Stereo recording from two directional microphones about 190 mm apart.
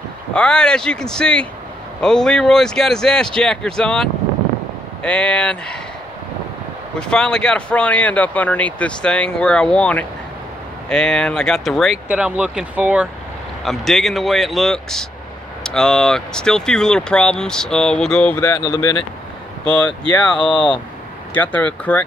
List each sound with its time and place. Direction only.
0.3 s speech: 5° left (ahead or behind)
7.0 s speech: 5° left (ahead or behind)
18.4 s speech: 20° left (ahead or behind)
19.6 s speech: 5° left (ahead or behind)